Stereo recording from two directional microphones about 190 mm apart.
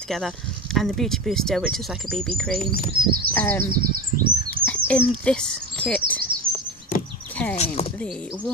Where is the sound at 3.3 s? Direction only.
10° left (ahead or behind).